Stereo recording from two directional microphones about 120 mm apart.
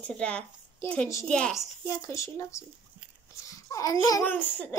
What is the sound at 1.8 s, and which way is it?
A child's voice, 25° left (ahead or behind).